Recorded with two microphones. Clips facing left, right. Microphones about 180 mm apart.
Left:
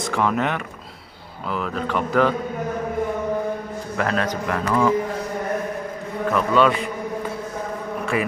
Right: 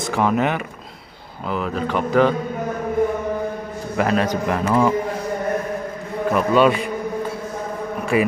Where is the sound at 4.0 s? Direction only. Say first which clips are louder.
Right 4 dB; 15° right (ahead or behind).